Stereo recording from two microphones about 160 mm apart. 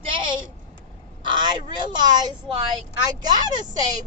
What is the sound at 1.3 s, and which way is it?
Speech, 30° right (ahead or behind).